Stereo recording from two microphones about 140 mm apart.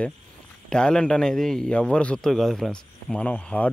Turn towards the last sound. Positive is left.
turn(degrees=10)  # may be behind; listen again after turning